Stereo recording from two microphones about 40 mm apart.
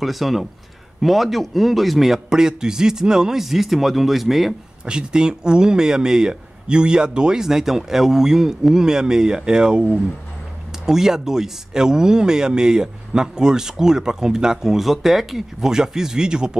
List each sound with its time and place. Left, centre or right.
0.0 s a man's voice: centre
4.8 s speech: right
10.9 s speech: centre